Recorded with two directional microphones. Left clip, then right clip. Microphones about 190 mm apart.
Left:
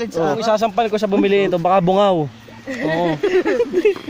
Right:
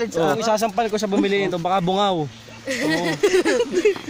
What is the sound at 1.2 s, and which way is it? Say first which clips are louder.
Speech: left 5 dB; 30° left (ahead or behind).